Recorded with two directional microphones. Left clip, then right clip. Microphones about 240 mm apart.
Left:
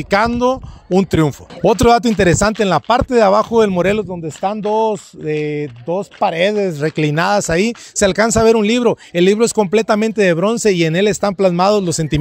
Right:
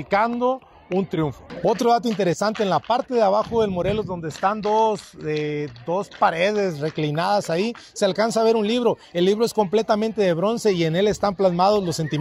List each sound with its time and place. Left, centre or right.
0.1 s speech: left
0.9 s speech: left